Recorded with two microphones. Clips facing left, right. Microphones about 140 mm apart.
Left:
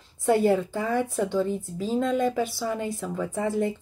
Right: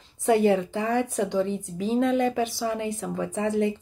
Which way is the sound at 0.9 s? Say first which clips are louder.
Even; 15° right (ahead or behind).